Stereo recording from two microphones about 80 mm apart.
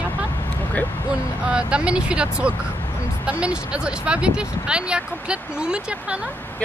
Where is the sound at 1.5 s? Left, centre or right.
Centre.